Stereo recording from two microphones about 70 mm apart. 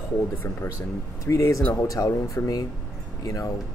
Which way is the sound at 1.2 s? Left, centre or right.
Left.